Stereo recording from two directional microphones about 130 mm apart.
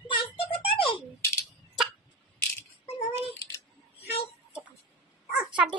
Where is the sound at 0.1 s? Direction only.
45° left (ahead or behind).